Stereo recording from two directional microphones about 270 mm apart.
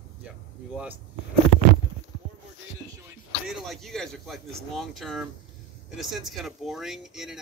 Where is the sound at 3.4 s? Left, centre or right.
Centre.